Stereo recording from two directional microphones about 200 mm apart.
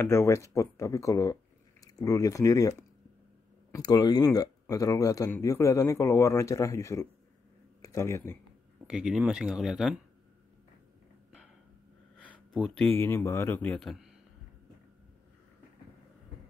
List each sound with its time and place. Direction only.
0.0 s speech: 10° left (ahead or behind)
3.7 s speech: 20° left (ahead or behind)
8.8 s speech: 5° right (ahead or behind)
12.5 s speech: centre (ahead or behind)
12.8 s speech: 10° left (ahead or behind)